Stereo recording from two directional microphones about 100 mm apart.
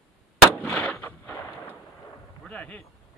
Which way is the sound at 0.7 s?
15° left (ahead or behind).